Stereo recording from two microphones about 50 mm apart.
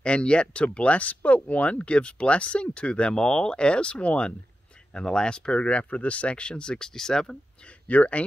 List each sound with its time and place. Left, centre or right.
0.0 s speech: left
7.9 s speech: left